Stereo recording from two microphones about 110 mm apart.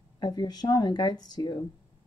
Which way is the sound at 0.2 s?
40° left (ahead or behind).